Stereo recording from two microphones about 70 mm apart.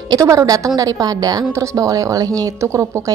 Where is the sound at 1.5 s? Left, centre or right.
Right.